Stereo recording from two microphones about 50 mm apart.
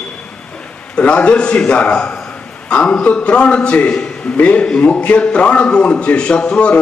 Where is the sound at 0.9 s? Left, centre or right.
Left.